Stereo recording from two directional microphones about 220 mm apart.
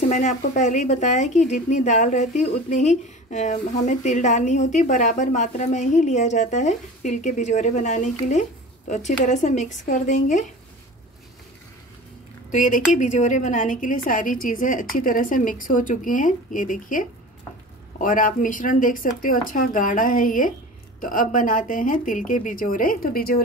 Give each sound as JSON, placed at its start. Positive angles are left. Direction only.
{"t": 0.1, "sound": "speech", "side_deg": 35}
{"t": 12.4, "sound": "speech", "side_deg": 35}